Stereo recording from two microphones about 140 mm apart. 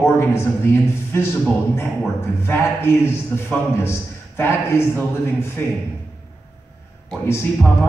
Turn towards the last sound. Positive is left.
turn(degrees=15)  # may be behind; listen again after turning